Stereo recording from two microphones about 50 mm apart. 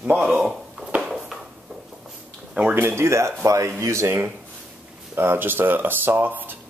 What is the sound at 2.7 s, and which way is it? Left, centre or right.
Speech, right.